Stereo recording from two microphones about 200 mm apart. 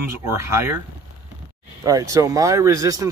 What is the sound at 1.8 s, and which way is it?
Speech, 15° right (ahead or behind).